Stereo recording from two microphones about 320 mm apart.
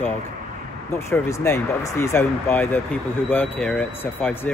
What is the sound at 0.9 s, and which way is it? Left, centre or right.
Speech, centre.